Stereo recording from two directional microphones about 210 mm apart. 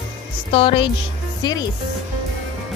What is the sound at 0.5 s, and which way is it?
Speech, 25° left (ahead or behind).